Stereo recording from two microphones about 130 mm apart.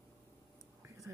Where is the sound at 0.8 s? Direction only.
25° right (ahead or behind).